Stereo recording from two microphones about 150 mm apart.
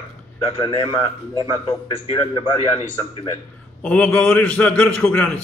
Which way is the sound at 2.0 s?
40° left (ahead or behind).